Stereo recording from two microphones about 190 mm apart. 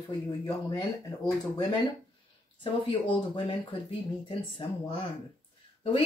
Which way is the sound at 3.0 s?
25° left (ahead or behind).